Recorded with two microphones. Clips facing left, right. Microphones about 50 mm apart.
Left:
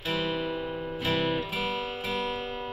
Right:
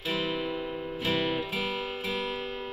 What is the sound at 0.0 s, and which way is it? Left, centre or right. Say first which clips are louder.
Music: left 1 dB; left.